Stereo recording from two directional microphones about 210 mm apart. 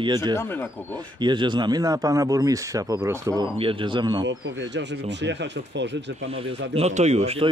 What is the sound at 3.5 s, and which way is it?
Speech, 25° right (ahead or behind).